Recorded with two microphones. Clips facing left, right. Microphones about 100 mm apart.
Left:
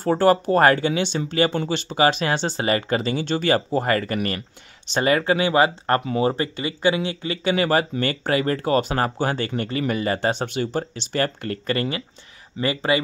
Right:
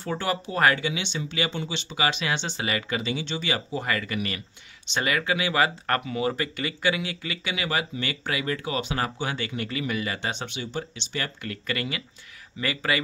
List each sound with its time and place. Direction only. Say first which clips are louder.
0.0 s speech: left 11 dB; 45° left (ahead or behind); by 13.0 s 25° left (ahead or behind)